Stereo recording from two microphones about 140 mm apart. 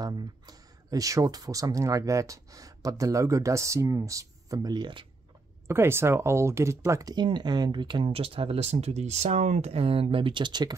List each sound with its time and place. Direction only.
0.0 s speech: 25° right (ahead or behind)
5.7 s speech: 15° right (ahead or behind)